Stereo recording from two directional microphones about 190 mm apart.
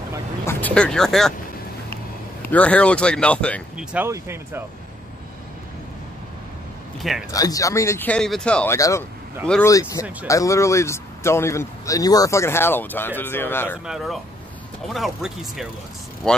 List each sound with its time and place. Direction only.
0.5 s speech: 10° left (ahead or behind)
2.4 s speech: 5° left (ahead or behind)
3.7 s speech: 10° right (ahead or behind)
7.0 s speech: centre (ahead or behind)
7.2 s speech: 20° left (ahead or behind)
8.7 s speech: 15° left (ahead or behind)
13.8 s speech: centre (ahead or behind)